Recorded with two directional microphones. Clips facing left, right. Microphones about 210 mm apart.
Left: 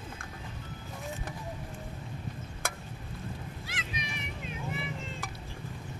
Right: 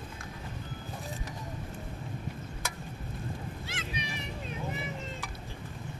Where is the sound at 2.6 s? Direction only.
55° left (ahead or behind).